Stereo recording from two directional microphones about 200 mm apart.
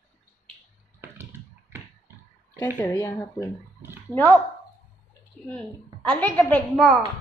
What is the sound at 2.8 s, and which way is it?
Speech, 15° left (ahead or behind).